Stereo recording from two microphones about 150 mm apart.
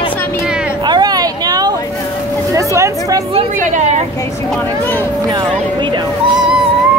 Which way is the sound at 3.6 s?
50° right (ahead or behind).